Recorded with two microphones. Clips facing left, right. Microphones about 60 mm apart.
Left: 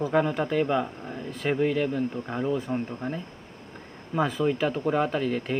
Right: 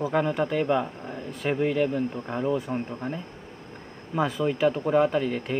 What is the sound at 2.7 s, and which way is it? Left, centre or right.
Speech, right.